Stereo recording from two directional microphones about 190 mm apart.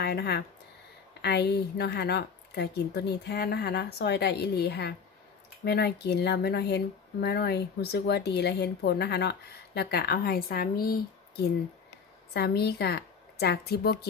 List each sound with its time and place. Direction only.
0.0 s speech: 60° left (ahead or behind)
12.4 s a woman's voice: 55° left (ahead or behind)